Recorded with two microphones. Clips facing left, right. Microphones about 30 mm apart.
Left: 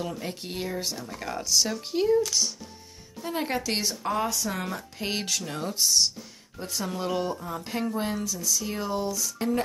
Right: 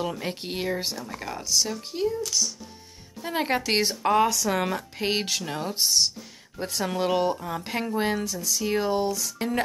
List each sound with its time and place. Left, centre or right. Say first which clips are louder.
0.0 s speech: right 3 dB; right
1.2 s speech: left 1 dB; centre
2.0 s speech: left 3 dB; left
3.2 s speech: right 3 dB; right
5.0 s speech: right 3 dB; right; by 6.6 s centre
6.8 s speech: right 5 dB; right